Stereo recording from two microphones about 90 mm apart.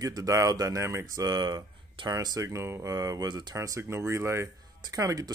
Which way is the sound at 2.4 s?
30° right (ahead or behind).